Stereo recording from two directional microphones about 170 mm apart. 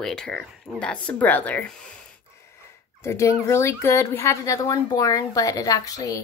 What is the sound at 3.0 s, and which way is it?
Speech, 15° left (ahead or behind).